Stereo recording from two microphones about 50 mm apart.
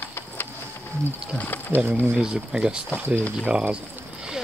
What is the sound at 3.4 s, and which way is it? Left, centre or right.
Speech, right.